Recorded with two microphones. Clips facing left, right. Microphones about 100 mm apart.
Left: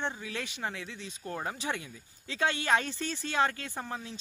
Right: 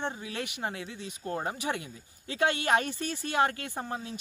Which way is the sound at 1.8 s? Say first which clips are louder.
Right 2 dB; 55° right (ahead or behind).